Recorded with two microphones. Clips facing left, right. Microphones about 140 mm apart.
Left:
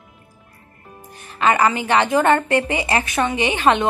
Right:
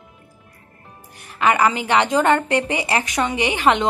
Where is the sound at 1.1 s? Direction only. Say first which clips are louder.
Even; 15° right (ahead or behind).